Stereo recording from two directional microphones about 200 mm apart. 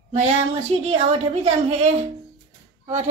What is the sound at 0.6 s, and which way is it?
A woman's voice, 35° right (ahead or behind).